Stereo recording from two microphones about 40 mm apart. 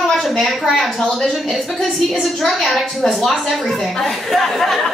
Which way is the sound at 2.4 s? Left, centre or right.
Centre.